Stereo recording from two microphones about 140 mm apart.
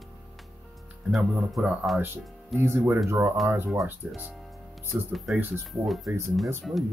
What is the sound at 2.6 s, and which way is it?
Speech, 20° right (ahead or behind).